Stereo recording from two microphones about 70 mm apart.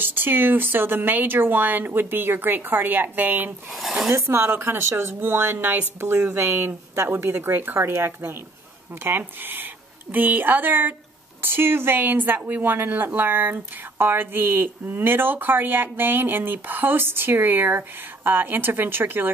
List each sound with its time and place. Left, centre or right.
0.0 s speech: right
4.1 s a woman's voice: right